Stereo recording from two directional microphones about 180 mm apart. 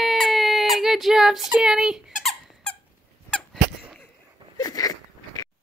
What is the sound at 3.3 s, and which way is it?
Squeak, 5° left (ahead or behind).